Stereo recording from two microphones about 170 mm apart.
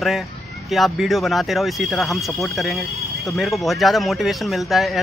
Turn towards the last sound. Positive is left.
turn(degrees=0)  # may be behind; listen again after turning